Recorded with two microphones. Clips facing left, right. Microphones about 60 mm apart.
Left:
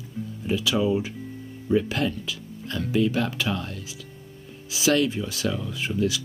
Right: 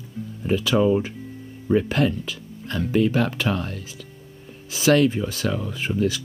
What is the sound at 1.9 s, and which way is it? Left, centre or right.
Speech, right.